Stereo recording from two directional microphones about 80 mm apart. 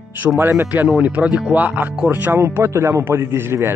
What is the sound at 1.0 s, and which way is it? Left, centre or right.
Speech, centre.